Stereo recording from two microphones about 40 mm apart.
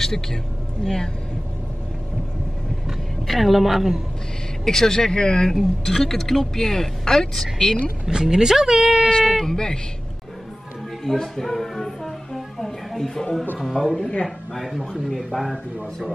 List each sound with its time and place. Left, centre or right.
0.0 s speech: centre
3.3 s a woman's voice: centre
4.6 s speech: centre
5.5 s speech: centre
8.0 s a woman's voice: centre
9.5 s speech: centre
11.1 s music: centre
13.7 s a woman's voice: centre